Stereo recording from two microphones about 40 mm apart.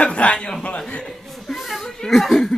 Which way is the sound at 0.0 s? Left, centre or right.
Left.